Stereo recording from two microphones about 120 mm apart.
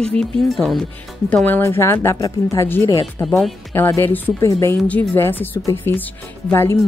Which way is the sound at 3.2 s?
Centre (ahead or behind).